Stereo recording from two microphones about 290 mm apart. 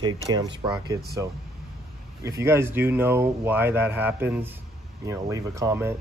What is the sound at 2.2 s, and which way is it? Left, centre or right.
Speech, centre.